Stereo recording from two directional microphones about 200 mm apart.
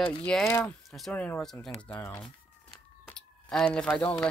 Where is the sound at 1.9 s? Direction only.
15° left (ahead or behind).